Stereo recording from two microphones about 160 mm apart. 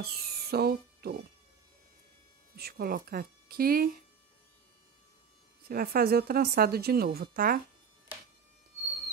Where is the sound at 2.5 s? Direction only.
75° right (ahead or behind).